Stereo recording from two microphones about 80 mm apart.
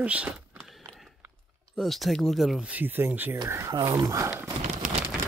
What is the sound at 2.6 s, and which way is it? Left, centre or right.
Speech, right.